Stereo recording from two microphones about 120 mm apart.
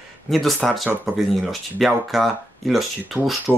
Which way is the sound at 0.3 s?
Centre (ahead or behind).